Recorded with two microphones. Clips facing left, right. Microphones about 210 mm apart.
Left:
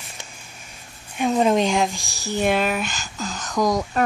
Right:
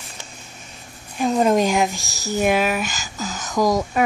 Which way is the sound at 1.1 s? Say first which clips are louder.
Right 1 dB; centre (ahead or behind).